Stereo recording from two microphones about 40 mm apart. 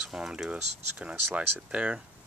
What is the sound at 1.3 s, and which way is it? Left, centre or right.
Speech, right.